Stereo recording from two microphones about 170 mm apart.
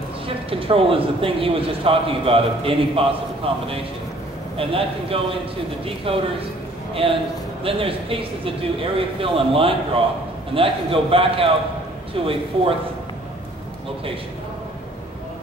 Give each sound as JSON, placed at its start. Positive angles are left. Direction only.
{"t": 0.5, "sound": "a man's voice", "side_deg": -35}